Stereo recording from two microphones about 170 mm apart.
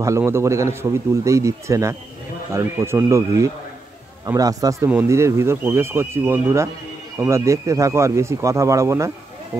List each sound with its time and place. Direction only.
0.0 s speech: 15° right (ahead or behind)